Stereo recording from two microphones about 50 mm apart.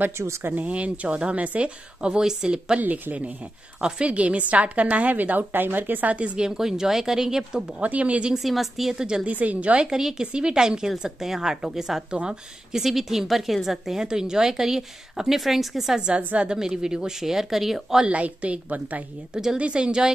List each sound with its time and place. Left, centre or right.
0.4 s a woman's voice: right
0.7 s speech: right
2.8 s a woman's voice: right
6.1 s a woman's voice: right
7.8 s speech: right
8.3 s a woman's voice: centre
9.2 s speech: right
9.8 s a woman's voice: centre
12.8 s a woman's voice: centre
16.2 s a woman's voice: right
16.4 s a woman's voice: centre
18.0 s speech: right
19.3 s a woman's voice: centre